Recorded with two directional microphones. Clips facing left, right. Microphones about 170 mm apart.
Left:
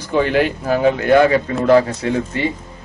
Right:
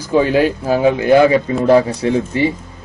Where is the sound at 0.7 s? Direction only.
15° right (ahead or behind).